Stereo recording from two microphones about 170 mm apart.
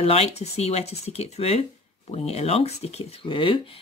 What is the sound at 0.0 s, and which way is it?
Speech, 35° left (ahead or behind).